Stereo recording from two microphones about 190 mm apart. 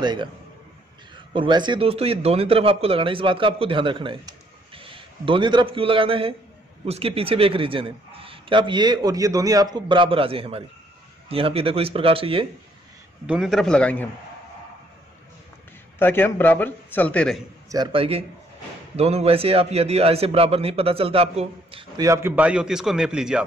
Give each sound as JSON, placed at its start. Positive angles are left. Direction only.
{"t": 0.0, "sound": "speech", "side_deg": -25}
{"t": 1.3, "sound": "speech", "side_deg": -25}
{"t": 13.3, "sound": "a man's voice", "side_deg": 0}
{"t": 16.0, "sound": "a man's voice", "side_deg": 10}
{"t": 17.6, "sound": "a man's voice", "side_deg": -20}
{"t": 22.0, "sound": "a man's voice", "side_deg": -15}